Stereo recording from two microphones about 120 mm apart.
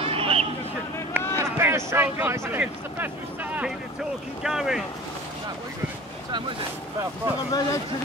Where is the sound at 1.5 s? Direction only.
20° right (ahead or behind).